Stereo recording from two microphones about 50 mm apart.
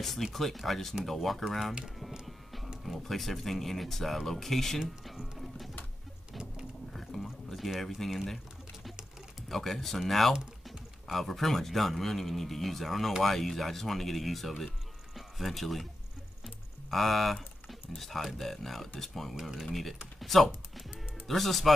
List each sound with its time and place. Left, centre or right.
0.0 s speech: centre
2.2 s music: centre
2.8 s speech: centre
6.9 s a sound: centre
9.5 s speech: centre
10.3 s typing: centre
11.1 s speech: centre
16.9 s speech: centre
20.2 s typing: centre
21.3 s speech: centre